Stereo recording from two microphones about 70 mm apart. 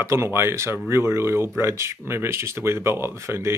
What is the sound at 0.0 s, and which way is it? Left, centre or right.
Speech, right.